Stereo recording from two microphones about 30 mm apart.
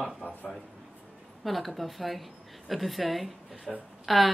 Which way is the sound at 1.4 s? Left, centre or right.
Centre.